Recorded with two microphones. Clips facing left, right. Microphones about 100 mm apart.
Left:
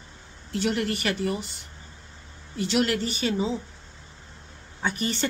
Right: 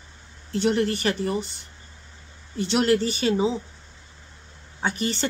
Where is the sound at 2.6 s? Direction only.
35° right (ahead or behind).